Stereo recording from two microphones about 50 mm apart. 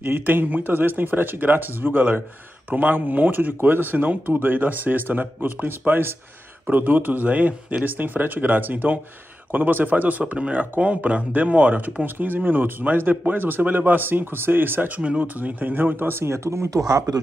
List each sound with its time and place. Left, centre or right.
0.0 s speech: right
15.0 s speech: right